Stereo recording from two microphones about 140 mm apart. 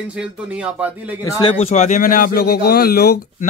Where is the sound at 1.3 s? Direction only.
30° left (ahead or behind).